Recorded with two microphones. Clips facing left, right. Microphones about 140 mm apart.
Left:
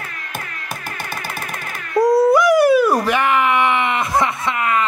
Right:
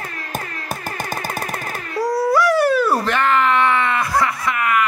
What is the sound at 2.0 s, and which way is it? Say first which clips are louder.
Dog: left 5 dB; 20° left (ahead or behind).